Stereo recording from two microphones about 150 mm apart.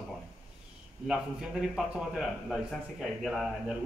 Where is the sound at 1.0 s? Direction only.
5° right (ahead or behind).